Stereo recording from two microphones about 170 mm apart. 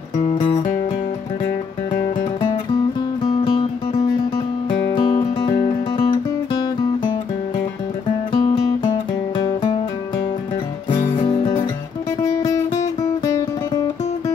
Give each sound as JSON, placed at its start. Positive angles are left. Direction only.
{"t": 0.2, "sound": "music", "side_deg": 30}
{"t": 4.6, "sound": "music", "side_deg": 25}
{"t": 8.3, "sound": "music", "side_deg": 25}
{"t": 11.1, "sound": "music", "side_deg": 30}
{"t": 12.2, "sound": "music", "side_deg": 20}